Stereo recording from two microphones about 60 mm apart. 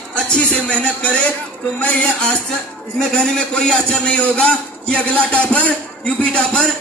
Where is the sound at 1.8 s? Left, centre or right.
Left.